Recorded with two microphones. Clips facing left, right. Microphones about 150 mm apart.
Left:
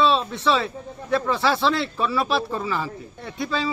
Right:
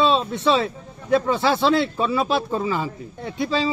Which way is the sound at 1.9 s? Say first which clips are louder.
Right 2 dB; 20° right (ahead or behind).